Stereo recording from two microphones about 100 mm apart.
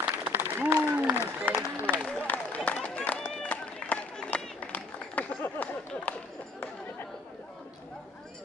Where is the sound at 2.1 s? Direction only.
15° left (ahead or behind).